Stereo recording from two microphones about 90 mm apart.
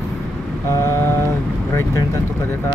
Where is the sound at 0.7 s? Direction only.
30° left (ahead or behind).